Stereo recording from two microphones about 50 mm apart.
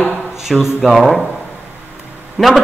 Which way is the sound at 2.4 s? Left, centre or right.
Centre.